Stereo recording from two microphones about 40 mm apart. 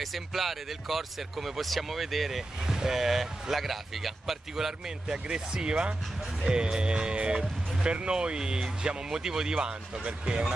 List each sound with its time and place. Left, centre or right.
0.0 s speech: centre
5.0 s speech: right